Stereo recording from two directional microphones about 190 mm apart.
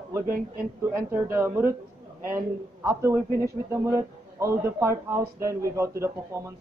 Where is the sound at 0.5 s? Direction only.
15° right (ahead or behind).